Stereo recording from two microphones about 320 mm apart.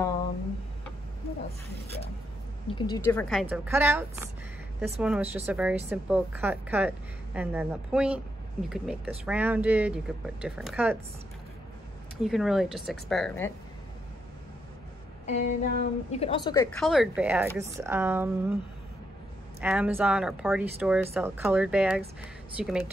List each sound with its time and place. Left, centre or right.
2.7 s speech: centre
12.2 s speech: centre
15.2 s a woman's voice: left
16.7 s speech: centre
19.6 s speech: centre